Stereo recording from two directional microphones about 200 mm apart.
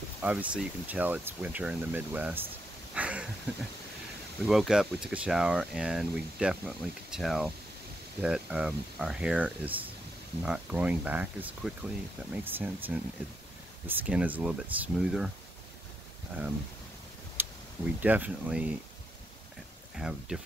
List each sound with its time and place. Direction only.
0.2 s speech: 5° right (ahead or behind)
2.9 s a sound: 5° right (ahead or behind)
4.5 s speech: centre (ahead or behind)
17.4 s speech: 10° right (ahead or behind)
20.0 s speech: 5° right (ahead or behind)